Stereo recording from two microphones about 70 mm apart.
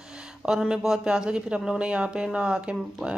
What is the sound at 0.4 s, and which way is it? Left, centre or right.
Speech, centre.